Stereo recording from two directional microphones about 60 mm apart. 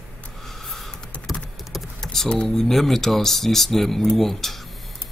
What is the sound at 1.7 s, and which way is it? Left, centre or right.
Speech, centre.